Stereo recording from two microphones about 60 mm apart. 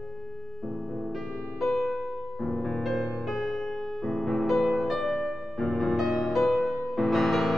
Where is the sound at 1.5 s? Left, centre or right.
Centre.